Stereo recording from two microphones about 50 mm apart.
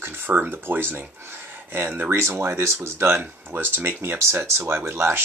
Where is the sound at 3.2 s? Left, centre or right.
Right.